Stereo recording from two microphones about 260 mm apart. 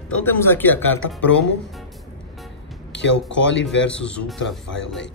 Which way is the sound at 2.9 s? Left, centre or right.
Left.